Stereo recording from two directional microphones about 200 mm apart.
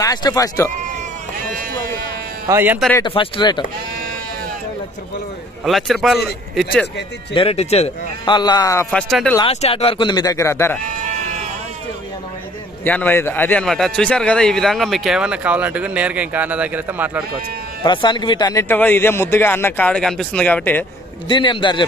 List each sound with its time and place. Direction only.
0.0 s a man's voice: 20° left (ahead or behind)
1.5 s speech: 45° right (ahead or behind)
2.4 s speech: 10° right (ahead or behind)
3.1 s a man's voice: 25° left (ahead or behind)
5.7 s a man's voice: centre (ahead or behind)
7.3 s a man's voice: 30° left (ahead or behind)
8.9 s a man's voice: 5° left (ahead or behind)
9.4 s a man's voice: 30° left (ahead or behind); by 10.8 s 15° left (ahead or behind)
10.9 s sheep: 40° right (ahead or behind)
12.8 s a man's voice: 10° left (ahead or behind); by 17.2 s 10° right (ahead or behind)
17.8 s a man's voice: 20° left (ahead or behind)
21.3 s a man's voice: 25° left (ahead or behind)